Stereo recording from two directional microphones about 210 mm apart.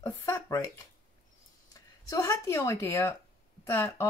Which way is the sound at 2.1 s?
15° left (ahead or behind).